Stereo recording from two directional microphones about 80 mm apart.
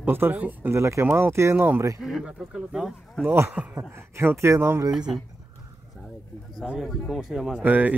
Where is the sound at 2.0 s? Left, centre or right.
Centre.